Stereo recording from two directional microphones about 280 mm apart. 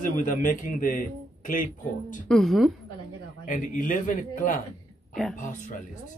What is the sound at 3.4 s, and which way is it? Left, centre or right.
A man's voice, left.